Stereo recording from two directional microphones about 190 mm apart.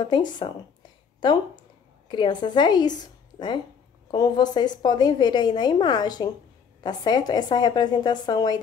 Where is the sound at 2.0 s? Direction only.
25° left (ahead or behind).